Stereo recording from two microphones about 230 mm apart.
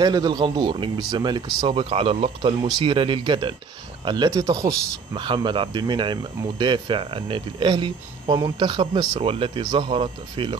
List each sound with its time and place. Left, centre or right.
0.0 s speech: centre